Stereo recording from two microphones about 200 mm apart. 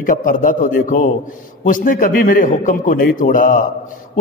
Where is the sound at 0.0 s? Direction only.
45° left (ahead or behind).